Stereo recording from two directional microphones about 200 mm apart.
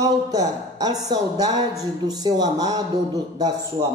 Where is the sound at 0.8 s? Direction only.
20° right (ahead or behind).